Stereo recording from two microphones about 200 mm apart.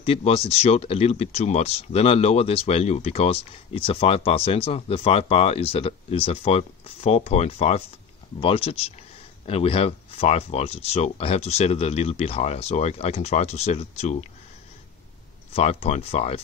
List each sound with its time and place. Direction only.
0.0 s speech: 30° left (ahead or behind)
15.5 s speech: 30° left (ahead or behind)